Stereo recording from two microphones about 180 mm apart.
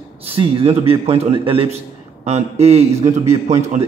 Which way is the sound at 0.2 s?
30° right (ahead or behind).